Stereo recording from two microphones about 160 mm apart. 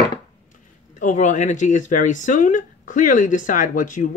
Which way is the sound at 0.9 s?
50° left (ahead or behind).